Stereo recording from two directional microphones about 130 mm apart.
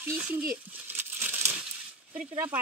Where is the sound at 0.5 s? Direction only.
15° right (ahead or behind).